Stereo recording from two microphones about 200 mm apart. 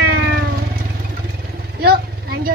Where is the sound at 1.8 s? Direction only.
50° right (ahead or behind).